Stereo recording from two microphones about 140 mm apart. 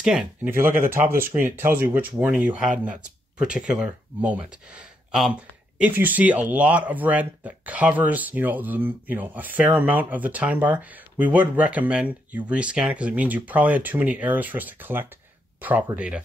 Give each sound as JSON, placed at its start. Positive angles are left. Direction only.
{"t": 0.0, "sound": "speech", "side_deg": -5}